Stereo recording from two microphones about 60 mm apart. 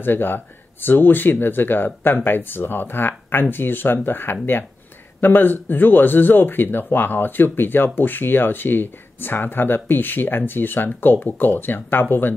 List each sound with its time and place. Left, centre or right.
0.0 s speech: left